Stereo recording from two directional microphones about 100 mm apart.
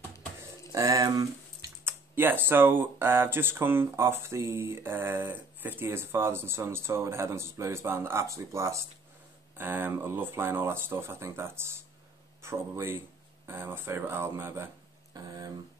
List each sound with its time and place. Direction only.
0.7 s speech: 35° right (ahead or behind)
1.9 s speech: 20° right (ahead or behind)
15.1 s a sound: 40° right (ahead or behind)